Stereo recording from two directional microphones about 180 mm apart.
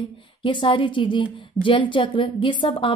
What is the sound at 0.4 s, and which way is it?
A woman's voice, 30° left (ahead or behind).